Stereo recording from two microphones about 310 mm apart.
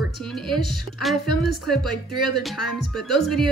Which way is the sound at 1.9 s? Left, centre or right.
Right.